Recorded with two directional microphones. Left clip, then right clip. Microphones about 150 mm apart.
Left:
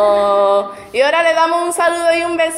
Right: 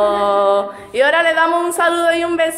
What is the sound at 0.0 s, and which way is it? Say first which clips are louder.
Music: left 2 dB; 5° right (ahead or behind).